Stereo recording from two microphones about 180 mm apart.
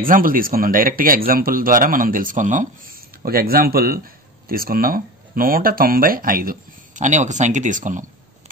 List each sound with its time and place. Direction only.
0.0 s speech: 50° right (ahead or behind)
3.2 s speech: 55° right (ahead or behind)